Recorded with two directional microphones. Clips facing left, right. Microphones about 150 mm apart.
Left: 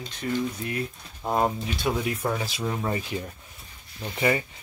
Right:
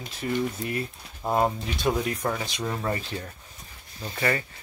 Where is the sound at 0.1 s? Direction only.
Centre (ahead or behind).